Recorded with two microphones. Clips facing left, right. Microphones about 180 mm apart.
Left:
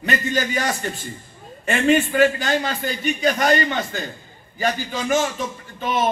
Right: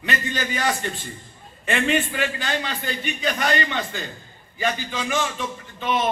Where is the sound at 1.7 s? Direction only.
45° left (ahead or behind).